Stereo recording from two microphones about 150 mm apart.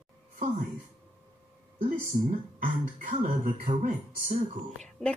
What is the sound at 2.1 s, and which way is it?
Speech, 65° right (ahead or behind).